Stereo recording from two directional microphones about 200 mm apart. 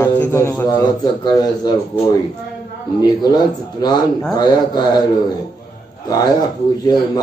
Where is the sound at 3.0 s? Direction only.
20° left (ahead or behind).